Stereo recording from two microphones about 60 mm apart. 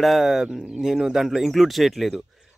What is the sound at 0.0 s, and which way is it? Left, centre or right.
Speech, centre.